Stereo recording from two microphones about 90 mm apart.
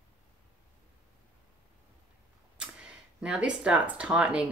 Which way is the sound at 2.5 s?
10° right (ahead or behind).